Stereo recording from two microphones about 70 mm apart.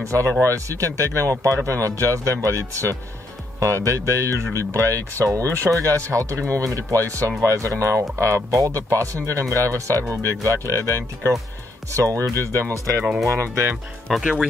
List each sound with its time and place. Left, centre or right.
0.0 s speech: right
14.2 s speech: centre